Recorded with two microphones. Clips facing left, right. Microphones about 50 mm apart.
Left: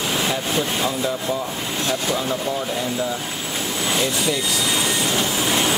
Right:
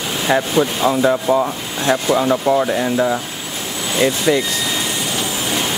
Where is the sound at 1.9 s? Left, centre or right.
Right.